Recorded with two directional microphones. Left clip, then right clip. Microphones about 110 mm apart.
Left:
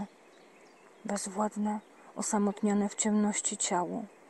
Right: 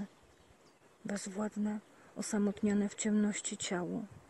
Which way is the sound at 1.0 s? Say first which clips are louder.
Left 7 dB; 30° right (ahead or behind).